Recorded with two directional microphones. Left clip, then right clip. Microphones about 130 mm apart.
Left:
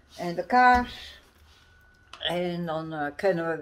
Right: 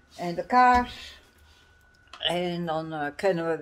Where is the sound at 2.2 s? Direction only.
30° right (ahead or behind).